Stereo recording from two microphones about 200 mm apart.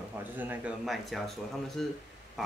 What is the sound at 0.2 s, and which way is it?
Speech, 10° right (ahead or behind).